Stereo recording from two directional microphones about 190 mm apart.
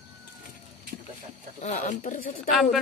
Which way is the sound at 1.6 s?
40° left (ahead or behind).